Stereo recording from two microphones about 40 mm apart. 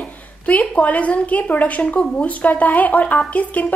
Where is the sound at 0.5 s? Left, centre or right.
Left.